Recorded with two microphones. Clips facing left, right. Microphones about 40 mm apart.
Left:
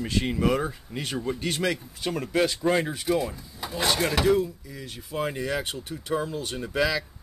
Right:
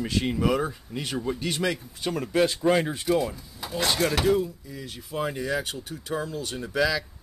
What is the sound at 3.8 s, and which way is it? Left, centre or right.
Speech, centre.